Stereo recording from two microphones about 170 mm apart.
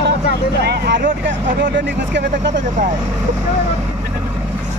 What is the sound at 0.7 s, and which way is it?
Speech, 80° right.